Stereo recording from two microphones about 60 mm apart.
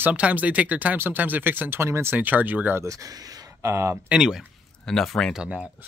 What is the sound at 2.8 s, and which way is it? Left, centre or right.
Speech, right.